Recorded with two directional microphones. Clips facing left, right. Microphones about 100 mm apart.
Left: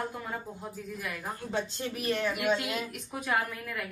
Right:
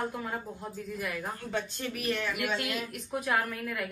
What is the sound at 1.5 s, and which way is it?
Speech, 30° left (ahead or behind).